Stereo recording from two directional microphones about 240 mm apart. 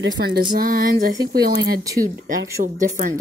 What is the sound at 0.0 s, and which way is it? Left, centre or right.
A woman's voice, right.